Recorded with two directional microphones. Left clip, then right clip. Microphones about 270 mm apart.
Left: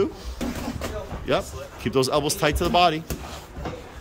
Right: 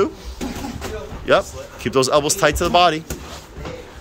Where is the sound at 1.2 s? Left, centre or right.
Centre.